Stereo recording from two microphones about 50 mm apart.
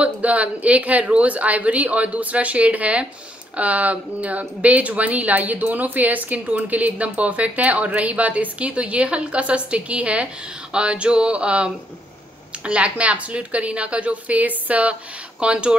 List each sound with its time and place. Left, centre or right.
0.0 s a woman's voice: right